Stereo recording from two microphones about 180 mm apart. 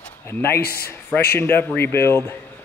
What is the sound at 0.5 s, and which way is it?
Speech, 60° left (ahead or behind).